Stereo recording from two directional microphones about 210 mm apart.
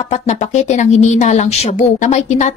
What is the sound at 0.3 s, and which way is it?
A woman's voice, 35° left (ahead or behind).